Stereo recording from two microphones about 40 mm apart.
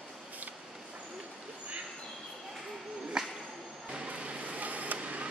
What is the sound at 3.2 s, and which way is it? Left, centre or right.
Whip, centre.